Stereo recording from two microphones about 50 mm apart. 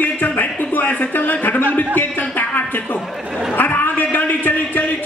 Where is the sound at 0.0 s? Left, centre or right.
Left.